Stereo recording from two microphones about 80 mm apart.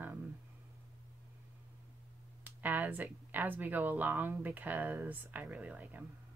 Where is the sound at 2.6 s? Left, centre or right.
Right.